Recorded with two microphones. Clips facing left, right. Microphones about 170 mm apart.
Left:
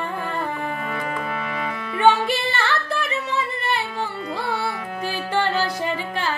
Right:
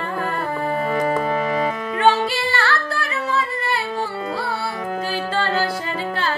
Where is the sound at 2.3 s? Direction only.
20° left (ahead or behind).